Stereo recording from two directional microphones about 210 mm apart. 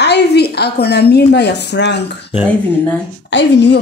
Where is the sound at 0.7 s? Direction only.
50° left (ahead or behind).